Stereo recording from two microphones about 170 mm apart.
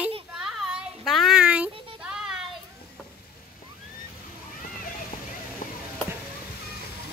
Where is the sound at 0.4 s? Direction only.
Centre (ahead or behind).